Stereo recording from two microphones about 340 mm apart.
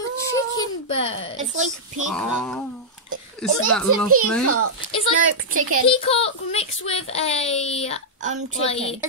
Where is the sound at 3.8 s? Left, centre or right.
Right.